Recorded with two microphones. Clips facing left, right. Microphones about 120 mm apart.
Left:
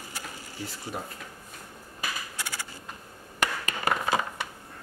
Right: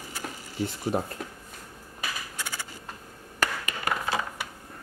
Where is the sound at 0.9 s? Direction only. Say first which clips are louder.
Right 8 dB; 40° right (ahead or behind).